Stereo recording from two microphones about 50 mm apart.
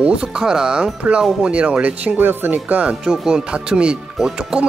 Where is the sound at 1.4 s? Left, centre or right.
Right.